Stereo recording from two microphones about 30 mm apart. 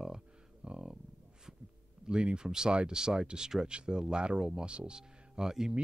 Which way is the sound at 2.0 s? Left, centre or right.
Right.